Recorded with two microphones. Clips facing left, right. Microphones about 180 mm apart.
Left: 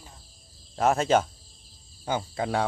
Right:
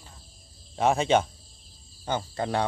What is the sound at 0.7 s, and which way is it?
Speech, centre (ahead or behind).